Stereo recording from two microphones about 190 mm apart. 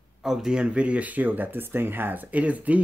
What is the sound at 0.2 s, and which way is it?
Speech, centre (ahead or behind).